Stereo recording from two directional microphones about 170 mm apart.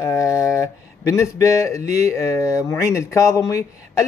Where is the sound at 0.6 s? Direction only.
15° left (ahead or behind).